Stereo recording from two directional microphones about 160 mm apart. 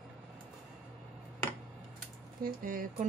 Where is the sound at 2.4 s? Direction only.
60° right (ahead or behind).